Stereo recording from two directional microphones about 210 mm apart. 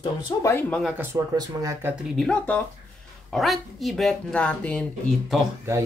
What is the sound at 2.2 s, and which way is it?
Speech, 5° left (ahead or behind).